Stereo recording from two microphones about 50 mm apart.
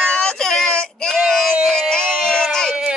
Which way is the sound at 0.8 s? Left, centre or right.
Centre.